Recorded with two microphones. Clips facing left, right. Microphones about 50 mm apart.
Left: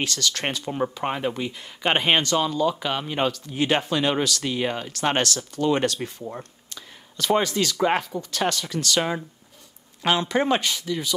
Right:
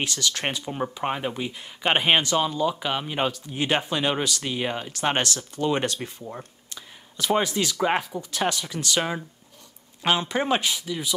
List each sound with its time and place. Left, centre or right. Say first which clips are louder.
0.0 s speech: left 1 dB; centre
0.7 s speech: left 2 dB; centre
5.0 s speech: left 2 dB; right
7.2 s speech: left 2 dB; centre
10.0 s speech: left 1 dB; centre
10.3 s speech: left 2 dB; centre